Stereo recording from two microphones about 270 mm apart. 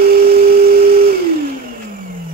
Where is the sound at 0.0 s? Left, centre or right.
Right.